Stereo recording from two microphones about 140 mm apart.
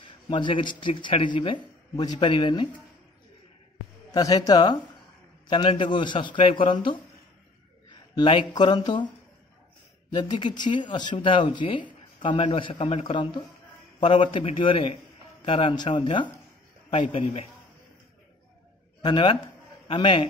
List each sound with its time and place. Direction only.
0.0 s speech: 35° left (ahead or behind)
4.1 s speech: 30° left (ahead or behind)
8.1 s speech: 35° left (ahead or behind)
10.1 s speech: 35° left (ahead or behind)
19.0 s speech: 35° left (ahead or behind)